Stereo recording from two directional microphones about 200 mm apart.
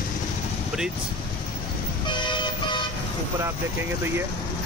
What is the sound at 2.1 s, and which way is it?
Toot, 25° left (ahead or behind).